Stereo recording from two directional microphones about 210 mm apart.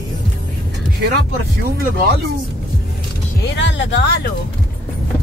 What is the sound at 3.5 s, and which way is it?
Speech, 60° left (ahead or behind).